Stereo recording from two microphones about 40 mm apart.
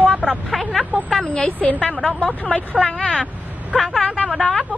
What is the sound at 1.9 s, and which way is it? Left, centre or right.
A woman's voice, left.